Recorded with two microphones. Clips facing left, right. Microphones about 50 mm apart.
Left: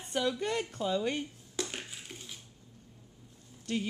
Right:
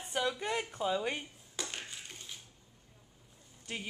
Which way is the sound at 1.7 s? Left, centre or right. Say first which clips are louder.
Left 2 dB; centre.